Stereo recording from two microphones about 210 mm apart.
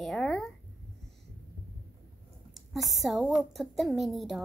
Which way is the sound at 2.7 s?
Centre (ahead or behind).